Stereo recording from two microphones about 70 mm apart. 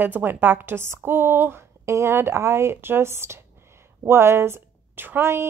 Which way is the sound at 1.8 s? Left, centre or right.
Right.